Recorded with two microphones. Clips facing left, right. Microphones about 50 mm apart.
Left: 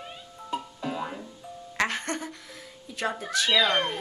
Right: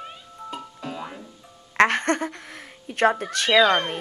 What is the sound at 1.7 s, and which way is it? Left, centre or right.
Speech, right.